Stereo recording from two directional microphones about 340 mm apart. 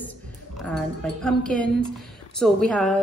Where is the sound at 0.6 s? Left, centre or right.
Centre.